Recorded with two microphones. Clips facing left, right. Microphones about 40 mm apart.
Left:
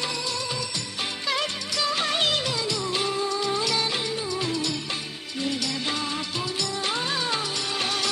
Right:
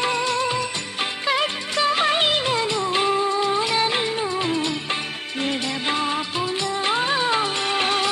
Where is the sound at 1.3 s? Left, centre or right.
Right.